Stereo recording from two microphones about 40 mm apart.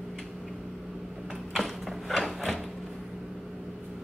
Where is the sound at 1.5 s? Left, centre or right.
Centre.